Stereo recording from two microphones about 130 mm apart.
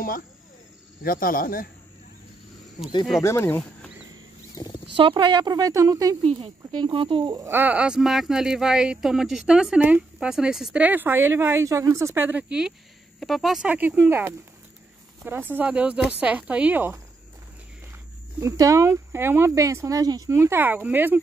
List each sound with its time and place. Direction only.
1.0 s speech: 90° left
3.2 s speech: 20° left (ahead or behind)
4.6 s wild animals: 30° left (ahead or behind)
4.9 s speech: 40° right (ahead or behind)
6.8 s speech: 40° right (ahead or behind)
7.3 s speech: 15° right (ahead or behind)
18.4 s speech: 25° right (ahead or behind)